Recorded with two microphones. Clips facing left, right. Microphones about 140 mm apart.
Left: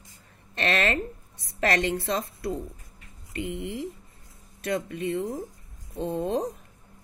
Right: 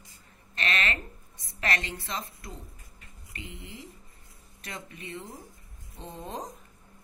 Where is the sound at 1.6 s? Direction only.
75° left (ahead or behind).